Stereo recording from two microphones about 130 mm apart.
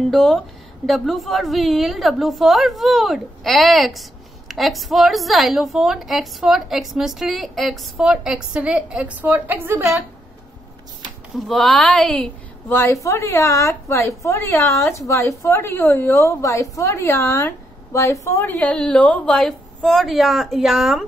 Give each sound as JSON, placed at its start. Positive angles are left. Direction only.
{"t": 0.1, "sound": "a woman's voice", "side_deg": 0}
{"t": 11.4, "sound": "a woman's voice", "side_deg": 0}
{"t": 12.6, "sound": "a woman's voice", "side_deg": 20}